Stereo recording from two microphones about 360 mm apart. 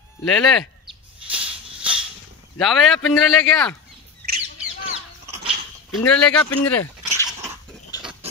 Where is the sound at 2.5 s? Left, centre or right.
Centre.